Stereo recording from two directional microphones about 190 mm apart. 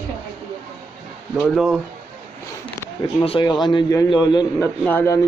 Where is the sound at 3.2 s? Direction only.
25° left (ahead or behind).